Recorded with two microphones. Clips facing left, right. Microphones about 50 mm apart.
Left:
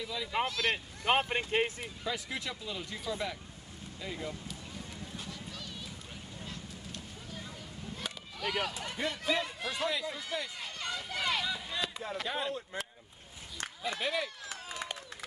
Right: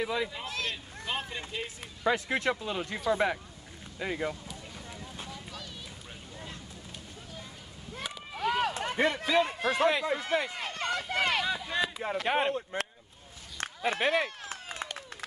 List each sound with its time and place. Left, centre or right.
0.0 s speech: right
0.6 s speech: left
2.0 s speech: right
8.3 s speech: right
13.6 s run: right